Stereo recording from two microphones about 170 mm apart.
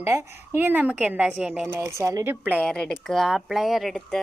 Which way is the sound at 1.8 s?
15° right (ahead or behind).